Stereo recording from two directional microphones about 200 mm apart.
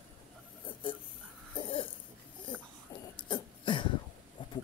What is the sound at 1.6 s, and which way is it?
Cough, 25° left (ahead or behind).